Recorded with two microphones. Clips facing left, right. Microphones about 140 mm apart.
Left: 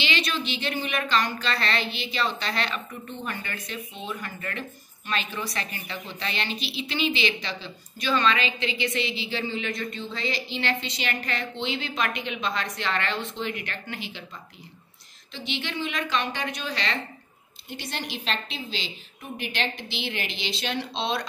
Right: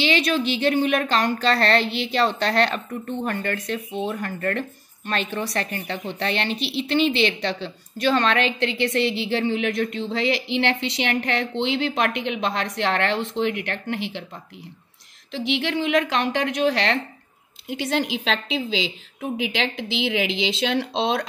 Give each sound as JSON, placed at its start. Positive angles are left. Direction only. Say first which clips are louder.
{"t": 0.0, "sound": "a woman's voice", "louder": "right 7 dB", "side_deg": -50}
{"t": 4.1, "sound": "speech", "louder": "right 5 dB", "side_deg": -50}
{"t": 5.3, "sound": "a woman's voice", "louder": "right 6 dB", "side_deg": -65}
{"t": 15.3, "sound": "speech", "louder": "right 8 dB", "side_deg": -90}